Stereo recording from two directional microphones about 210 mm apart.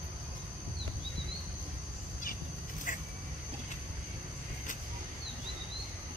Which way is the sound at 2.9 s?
40° left (ahead or behind).